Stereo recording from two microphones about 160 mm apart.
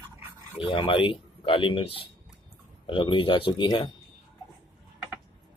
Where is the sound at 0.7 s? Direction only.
35° left (ahead or behind).